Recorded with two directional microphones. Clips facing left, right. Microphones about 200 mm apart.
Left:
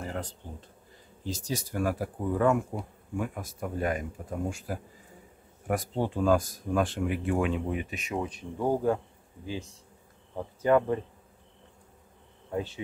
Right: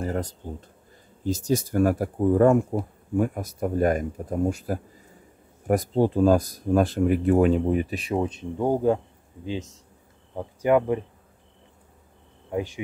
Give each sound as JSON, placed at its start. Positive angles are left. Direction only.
{"t": 0.0, "sound": "speech", "side_deg": -40}
{"t": 12.4, "sound": "speech", "side_deg": -15}